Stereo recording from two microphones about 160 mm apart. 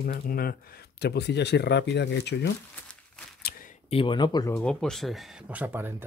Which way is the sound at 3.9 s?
30° left (ahead or behind).